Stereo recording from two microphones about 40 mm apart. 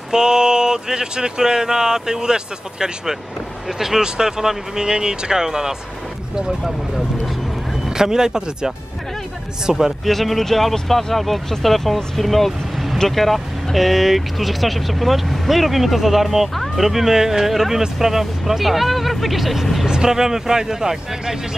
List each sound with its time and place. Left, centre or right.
0.1 s speech: centre
7.9 s speech: centre
10.0 s speech: centre
19.9 s speech: centre